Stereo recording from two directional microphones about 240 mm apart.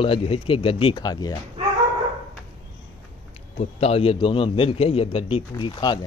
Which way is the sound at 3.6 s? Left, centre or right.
Left.